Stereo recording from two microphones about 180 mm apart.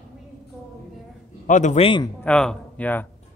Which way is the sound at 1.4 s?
45° left (ahead or behind).